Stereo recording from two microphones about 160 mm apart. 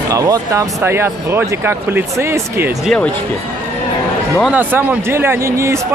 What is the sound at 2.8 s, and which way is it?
Speech, 5° left (ahead or behind).